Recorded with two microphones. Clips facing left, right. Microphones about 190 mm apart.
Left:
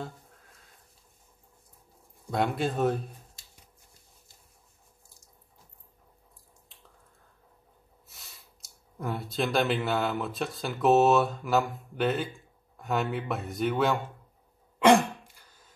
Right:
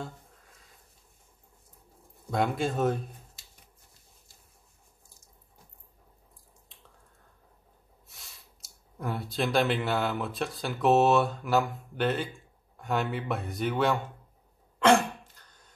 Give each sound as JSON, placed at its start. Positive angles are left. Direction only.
{"t": 2.3, "sound": "speech", "side_deg": 0}
{"t": 8.1, "sound": "speech", "side_deg": 0}
{"t": 14.8, "sound": "throat clearing", "side_deg": 10}